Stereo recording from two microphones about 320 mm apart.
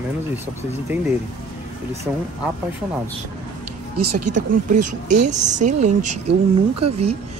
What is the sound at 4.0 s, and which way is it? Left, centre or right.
Speech, right.